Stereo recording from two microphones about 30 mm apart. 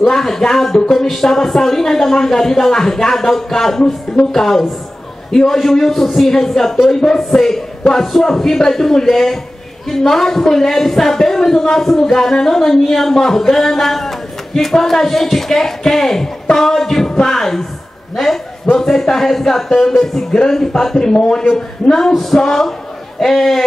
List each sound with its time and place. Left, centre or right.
0.1 s a man's voice: centre